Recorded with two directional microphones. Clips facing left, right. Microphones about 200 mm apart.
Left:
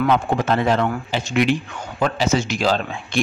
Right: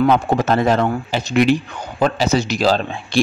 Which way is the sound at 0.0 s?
40° right (ahead or behind).